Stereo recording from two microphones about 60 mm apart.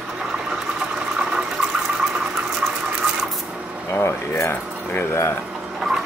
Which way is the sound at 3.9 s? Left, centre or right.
Left.